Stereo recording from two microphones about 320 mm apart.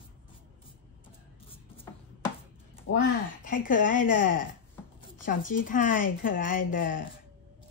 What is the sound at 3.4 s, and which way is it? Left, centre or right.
A woman's voice, left.